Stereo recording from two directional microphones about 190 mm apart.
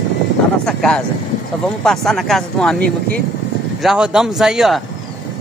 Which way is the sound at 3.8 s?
Centre (ahead or behind).